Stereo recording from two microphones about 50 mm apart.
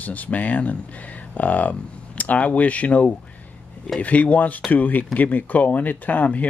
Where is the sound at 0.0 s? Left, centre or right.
Left.